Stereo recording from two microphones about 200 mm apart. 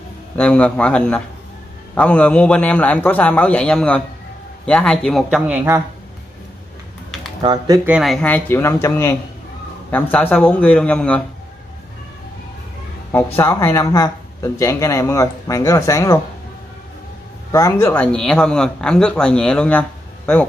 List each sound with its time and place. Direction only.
0.4 s speech: 5° left (ahead or behind)
7.4 s speech: 20° right (ahead or behind)
7.9 s speech: centre (ahead or behind)
13.1 s speech: 15° left (ahead or behind)
17.5 s speech: 15° left (ahead or behind)